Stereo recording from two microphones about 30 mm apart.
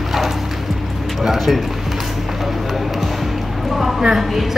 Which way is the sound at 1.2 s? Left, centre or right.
Centre.